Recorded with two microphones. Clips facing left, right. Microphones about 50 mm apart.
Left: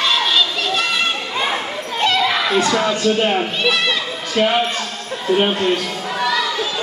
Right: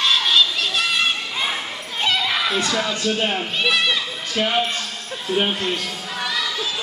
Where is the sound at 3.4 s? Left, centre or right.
Centre.